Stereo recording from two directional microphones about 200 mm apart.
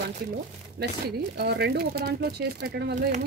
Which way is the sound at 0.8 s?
50° right (ahead or behind).